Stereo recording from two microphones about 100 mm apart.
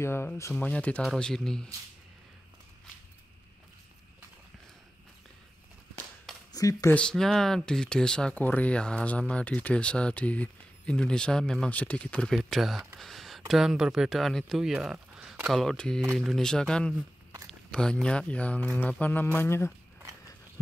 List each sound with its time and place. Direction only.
0.0 s speech: 25° left (ahead or behind); by 1.7 s 5° left (ahead or behind)
6.5 s speech: 35° left (ahead or behind)
6.9 s speech: 10° left (ahead or behind)